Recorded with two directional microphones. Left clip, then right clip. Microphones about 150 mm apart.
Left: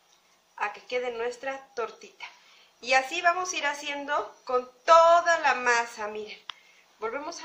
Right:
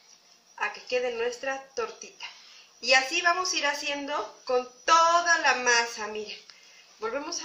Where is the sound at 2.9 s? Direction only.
20° left (ahead or behind).